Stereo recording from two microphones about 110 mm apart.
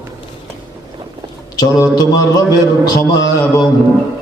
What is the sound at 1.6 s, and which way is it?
Speech, 35° left (ahead or behind).